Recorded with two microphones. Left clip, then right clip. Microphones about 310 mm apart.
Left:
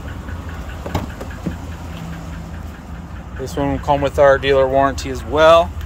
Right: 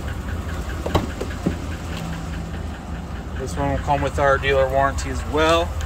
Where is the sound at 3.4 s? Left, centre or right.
Centre.